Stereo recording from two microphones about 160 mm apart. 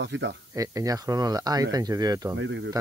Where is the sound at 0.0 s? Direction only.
90° right.